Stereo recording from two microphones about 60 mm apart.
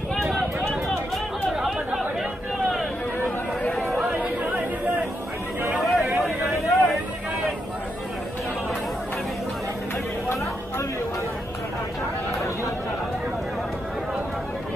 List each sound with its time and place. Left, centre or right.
0.8 s chatter: centre
3.7 s chatter: centre
5.8 s a sound: centre
6.1 s vehicle: centre